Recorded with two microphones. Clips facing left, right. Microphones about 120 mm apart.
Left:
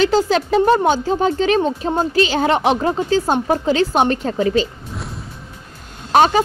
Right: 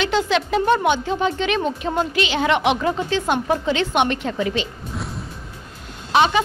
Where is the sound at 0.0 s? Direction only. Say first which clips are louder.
Left 4 dB; 35° left (ahead or behind).